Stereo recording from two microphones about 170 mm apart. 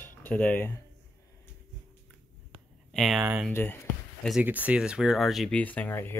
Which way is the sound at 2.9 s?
Centre (ahead or behind).